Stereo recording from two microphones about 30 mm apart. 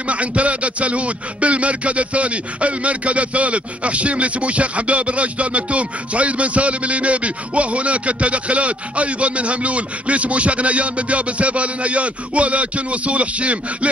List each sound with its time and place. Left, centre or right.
0.0 s speech: right